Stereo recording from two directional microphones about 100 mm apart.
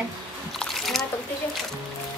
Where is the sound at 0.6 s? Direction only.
5° left (ahead or behind).